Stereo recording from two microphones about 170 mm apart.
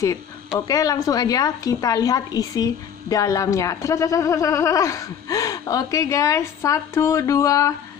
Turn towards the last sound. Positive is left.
turn(degrees=20)  # may be behind; listen again after turning